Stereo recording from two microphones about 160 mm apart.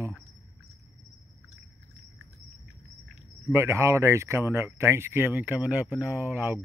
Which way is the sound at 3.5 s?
15° right (ahead or behind).